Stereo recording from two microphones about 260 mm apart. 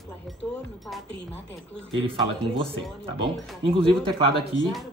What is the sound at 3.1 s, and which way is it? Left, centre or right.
Speech, centre.